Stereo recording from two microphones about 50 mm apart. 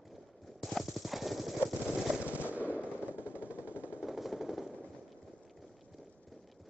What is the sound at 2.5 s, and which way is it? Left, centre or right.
Machine gun, right.